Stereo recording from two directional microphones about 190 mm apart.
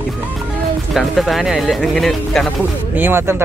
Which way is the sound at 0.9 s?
Centre (ahead or behind).